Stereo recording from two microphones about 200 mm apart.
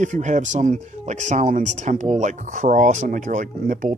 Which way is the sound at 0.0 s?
40° right (ahead or behind).